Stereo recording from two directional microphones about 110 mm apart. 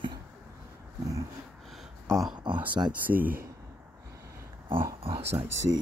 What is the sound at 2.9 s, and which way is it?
Speech, 15° right (ahead or behind).